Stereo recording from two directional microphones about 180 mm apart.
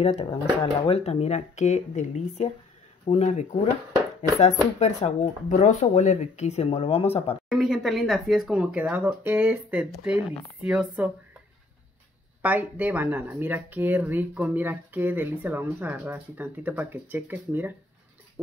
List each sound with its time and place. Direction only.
0.0 s speech: 35° left (ahead or behind)
7.4 s speech: 5° right (ahead or behind)
12.4 s speech: 10° right (ahead or behind)